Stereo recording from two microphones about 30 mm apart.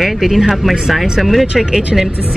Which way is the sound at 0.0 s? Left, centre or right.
Centre.